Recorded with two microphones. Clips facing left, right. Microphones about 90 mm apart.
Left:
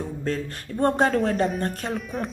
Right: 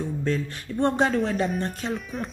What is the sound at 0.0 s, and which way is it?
Speech, 40° left (ahead or behind).